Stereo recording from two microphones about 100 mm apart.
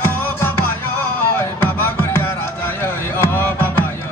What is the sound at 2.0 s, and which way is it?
Music, 25° left (ahead or behind).